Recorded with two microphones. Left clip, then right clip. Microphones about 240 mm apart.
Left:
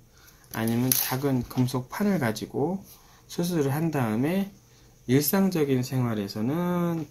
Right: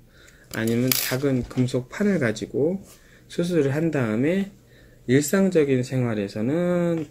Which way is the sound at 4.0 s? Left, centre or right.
Centre.